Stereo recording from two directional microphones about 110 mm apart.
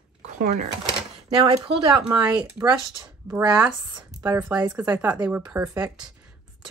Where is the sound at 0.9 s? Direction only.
50° right (ahead or behind).